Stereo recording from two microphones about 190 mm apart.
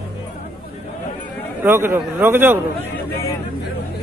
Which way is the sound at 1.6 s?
10° right (ahead or behind).